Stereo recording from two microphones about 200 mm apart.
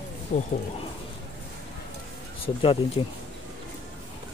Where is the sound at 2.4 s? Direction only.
25° left (ahead or behind).